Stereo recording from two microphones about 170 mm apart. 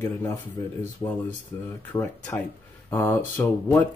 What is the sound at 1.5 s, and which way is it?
Speech, 15° left (ahead or behind).